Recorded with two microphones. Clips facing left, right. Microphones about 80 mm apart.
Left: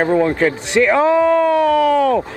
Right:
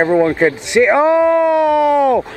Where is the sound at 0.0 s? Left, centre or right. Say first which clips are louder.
Right 2 dB; right.